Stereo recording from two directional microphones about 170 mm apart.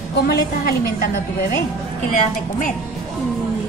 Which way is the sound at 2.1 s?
50° left (ahead or behind).